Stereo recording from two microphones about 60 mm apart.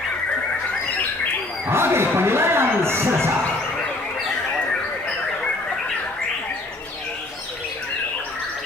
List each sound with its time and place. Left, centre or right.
1.7 s speech: right